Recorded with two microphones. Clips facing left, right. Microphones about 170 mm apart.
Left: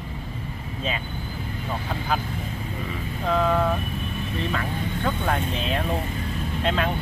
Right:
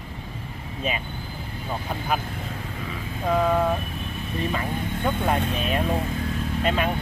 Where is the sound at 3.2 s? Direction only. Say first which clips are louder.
Right 1 dB; 10° right (ahead or behind).